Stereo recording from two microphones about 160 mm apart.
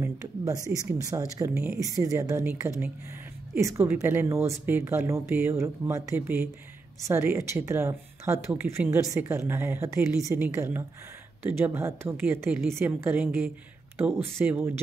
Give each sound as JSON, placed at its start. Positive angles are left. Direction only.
{"t": 0.0, "sound": "a woman's voice", "side_deg": -20}